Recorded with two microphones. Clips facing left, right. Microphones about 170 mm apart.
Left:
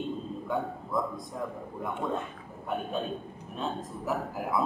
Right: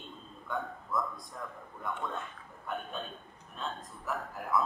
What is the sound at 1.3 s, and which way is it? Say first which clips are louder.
Speech: left 8 dB; 20° left (ahead or behind).